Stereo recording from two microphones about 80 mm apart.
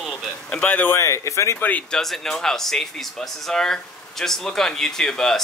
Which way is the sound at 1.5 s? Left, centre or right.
Left.